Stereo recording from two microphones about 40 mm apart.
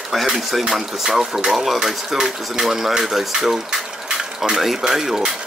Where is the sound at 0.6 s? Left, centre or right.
Centre.